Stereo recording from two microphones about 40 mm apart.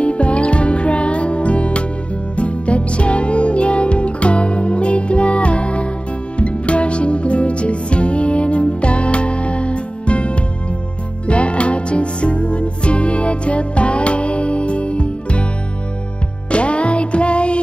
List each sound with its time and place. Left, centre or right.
0.0 s music: left
16.4 s music: left